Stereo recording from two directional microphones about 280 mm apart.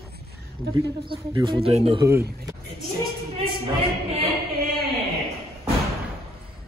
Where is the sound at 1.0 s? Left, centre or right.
Centre.